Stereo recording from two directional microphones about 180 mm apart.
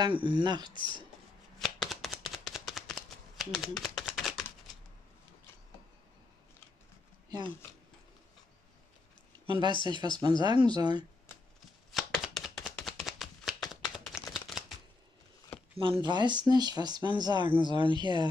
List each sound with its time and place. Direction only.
0.0 s speech: 25° right (ahead or behind)
0.7 s speech: 25° left (ahead or behind)
1.6 s shuffling cards: centre (ahead or behind)
7.2 s speech: 25° right (ahead or behind)
9.5 s speech: 25° right (ahead or behind)
9.9 s speech: 25° left (ahead or behind)
10.2 s speech: 25° right (ahead or behind)
11.9 s chopping: centre (ahead or behind)
15.8 s speech: 25° right (ahead or behind)